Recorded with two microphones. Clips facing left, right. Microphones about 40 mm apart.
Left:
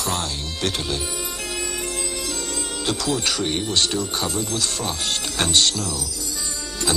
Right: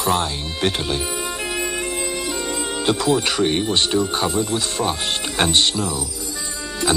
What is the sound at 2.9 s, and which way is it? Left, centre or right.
Speech, centre.